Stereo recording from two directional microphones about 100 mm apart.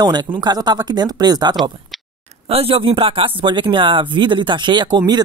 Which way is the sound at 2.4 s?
70° right (ahead or behind).